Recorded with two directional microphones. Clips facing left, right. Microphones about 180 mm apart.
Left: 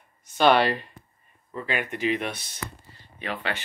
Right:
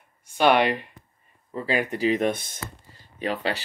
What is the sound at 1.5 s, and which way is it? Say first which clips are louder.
Speech: right 4 dB; 35° right (ahead or behind).